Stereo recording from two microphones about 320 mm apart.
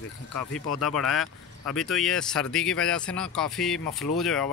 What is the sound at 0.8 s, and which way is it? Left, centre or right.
Speech, left.